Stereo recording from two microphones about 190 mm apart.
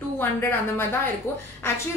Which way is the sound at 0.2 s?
10° left (ahead or behind).